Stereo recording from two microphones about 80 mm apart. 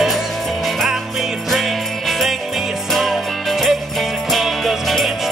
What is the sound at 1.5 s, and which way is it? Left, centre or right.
Jingle bell, centre.